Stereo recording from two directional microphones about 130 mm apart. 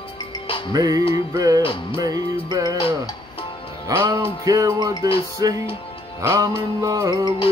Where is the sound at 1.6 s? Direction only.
45° left (ahead or behind).